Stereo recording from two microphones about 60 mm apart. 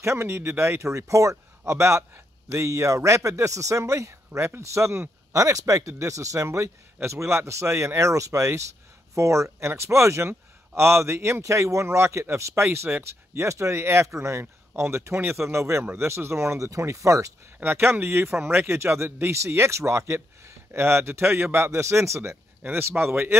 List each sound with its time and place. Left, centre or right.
0.0 s speech: right
1.3 s a man's voice: right
5.3 s speech: right
14.0 s speech: right
17.6 s speech: right
22.7 s speech: right